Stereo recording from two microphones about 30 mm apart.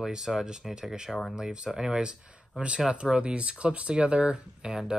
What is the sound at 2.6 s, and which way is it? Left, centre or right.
Speech, right.